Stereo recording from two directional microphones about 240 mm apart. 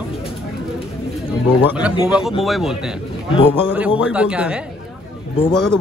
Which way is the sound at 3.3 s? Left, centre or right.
Left.